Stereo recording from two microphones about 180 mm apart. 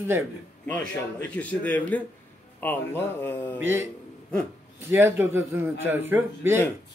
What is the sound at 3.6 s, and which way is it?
Speech, 15° right (ahead or behind).